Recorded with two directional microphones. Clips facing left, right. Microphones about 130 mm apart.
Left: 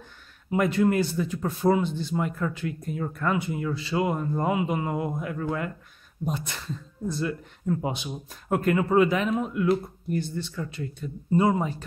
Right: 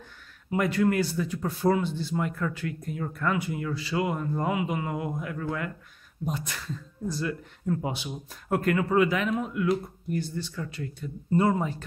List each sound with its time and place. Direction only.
0.5 s speech: 20° left (ahead or behind)
7.8 s speech: 20° left (ahead or behind)